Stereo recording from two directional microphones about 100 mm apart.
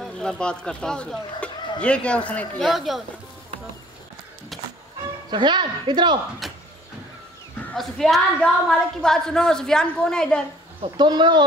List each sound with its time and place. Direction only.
0.0 s speech: 5° left (ahead or behind)
2.7 s a woman's voice: centre (ahead or behind)
5.3 s a woman's voice: 50° right (ahead or behind)
6.4 s a sound: centre (ahead or behind)
7.7 s a woman's voice: centre (ahead or behind)
11.0 s a woman's voice: 45° right (ahead or behind)